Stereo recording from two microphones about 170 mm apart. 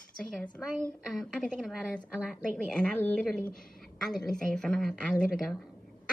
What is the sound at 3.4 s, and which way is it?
Speech, 55° left (ahead or behind).